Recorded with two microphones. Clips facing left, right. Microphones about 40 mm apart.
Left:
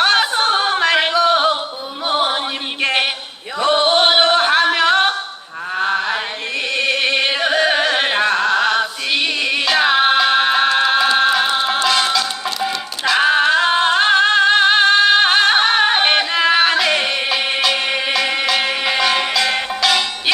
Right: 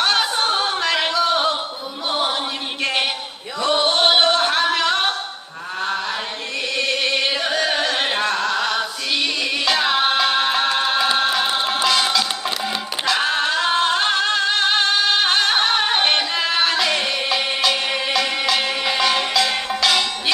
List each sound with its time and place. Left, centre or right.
0.0 s a sound: centre
2.0 s music: centre
3.5 s a sound: centre
5.8 s chant: left
6.8 s carnatic music: centre
9.8 s music: centre
13.2 s music: centre